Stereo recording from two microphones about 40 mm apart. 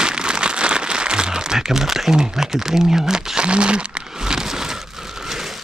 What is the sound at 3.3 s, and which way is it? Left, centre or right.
Speech, right.